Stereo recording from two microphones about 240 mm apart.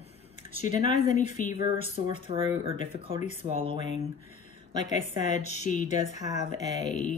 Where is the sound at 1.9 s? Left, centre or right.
Right.